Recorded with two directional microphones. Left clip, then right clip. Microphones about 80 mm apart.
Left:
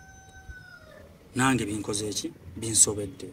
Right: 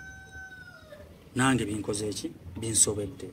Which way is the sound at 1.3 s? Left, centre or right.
Centre.